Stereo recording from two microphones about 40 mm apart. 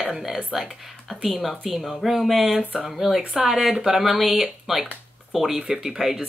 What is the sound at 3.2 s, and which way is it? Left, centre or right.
Speech, right.